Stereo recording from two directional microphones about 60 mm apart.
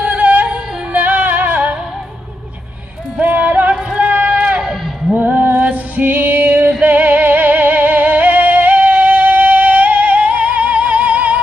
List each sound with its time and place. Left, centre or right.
0.0 s music: right
3.2 s a sound: right
5.1 s music: right